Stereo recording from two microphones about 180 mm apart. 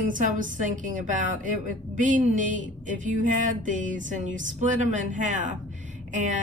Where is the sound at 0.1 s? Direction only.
45° right (ahead or behind).